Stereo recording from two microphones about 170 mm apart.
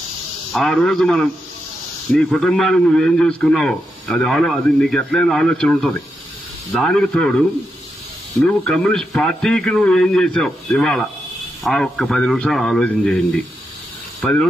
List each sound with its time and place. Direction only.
0.5 s a man's voice: centre (ahead or behind)